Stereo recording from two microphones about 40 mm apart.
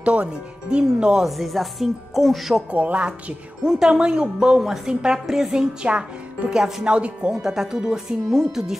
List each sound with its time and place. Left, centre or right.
0.0 s speech: right
1.2 s speech: centre
2.7 s speech: right
3.6 s speech: centre
4.6 s speech: centre
6.4 s speech: right
6.8 s speech: right
7.4 s speech: centre